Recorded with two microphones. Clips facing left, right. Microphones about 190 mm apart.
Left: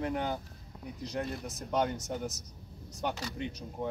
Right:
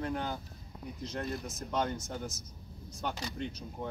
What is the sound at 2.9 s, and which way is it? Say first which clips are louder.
Speech: left 2 dB; 15° left (ahead or behind).